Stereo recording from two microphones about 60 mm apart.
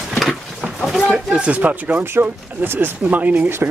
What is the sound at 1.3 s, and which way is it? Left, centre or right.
Speech, right.